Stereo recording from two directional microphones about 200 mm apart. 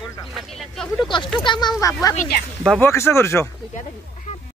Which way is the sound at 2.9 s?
15° left (ahead or behind).